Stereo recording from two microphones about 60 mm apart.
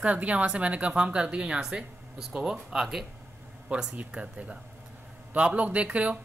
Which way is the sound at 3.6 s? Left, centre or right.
Centre.